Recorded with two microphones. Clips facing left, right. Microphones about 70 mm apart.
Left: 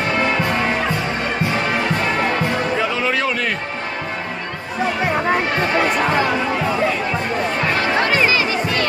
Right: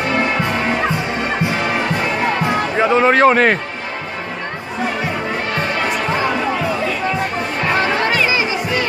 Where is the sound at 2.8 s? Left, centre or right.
Right.